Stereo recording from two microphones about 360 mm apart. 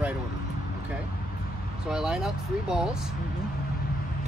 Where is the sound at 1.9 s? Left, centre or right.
Centre.